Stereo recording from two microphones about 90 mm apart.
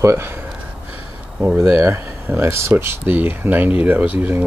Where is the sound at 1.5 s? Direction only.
30° right (ahead or behind).